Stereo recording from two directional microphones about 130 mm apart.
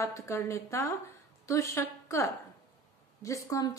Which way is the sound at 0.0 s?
25° left (ahead or behind).